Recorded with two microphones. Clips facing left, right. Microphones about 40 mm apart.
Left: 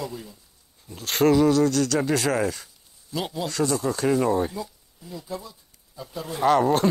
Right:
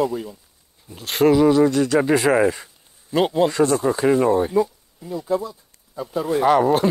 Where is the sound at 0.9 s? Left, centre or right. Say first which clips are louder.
Right 3 dB; centre.